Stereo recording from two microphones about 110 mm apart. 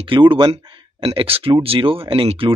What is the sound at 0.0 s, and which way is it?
Speech, 50° right (ahead or behind).